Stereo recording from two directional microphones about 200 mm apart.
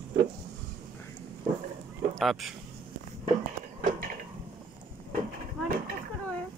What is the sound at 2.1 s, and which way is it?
Speech, centre (ahead or behind).